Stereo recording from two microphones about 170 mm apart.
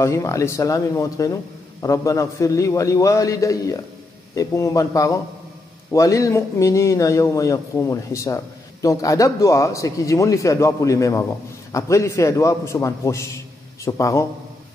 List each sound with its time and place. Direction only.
0.0 s a man's voice: 15° left (ahead or behind)